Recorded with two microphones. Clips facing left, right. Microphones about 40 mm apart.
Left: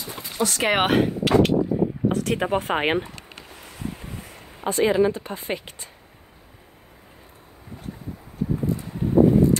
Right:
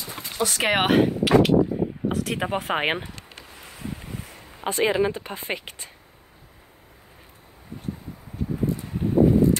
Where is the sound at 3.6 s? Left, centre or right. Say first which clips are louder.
Left 3 dB; centre.